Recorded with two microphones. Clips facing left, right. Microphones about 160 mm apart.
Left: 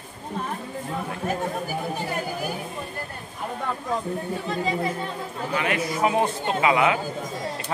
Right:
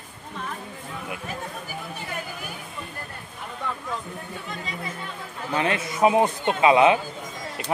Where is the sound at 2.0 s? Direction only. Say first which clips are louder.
Left 6 dB; 40° left (ahead or behind).